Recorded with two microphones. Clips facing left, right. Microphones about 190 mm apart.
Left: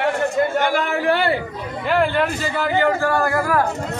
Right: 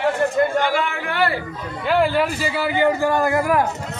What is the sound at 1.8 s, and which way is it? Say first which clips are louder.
A man's voice: right 1 dB; centre (ahead or behind).